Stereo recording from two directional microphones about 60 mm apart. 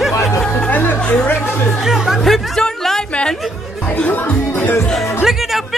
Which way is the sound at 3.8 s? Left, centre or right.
Left.